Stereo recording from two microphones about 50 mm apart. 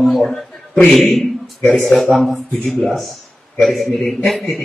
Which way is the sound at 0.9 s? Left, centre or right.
Centre.